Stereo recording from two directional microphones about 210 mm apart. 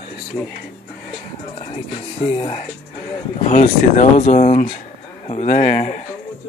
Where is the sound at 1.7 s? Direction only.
25° left (ahead or behind).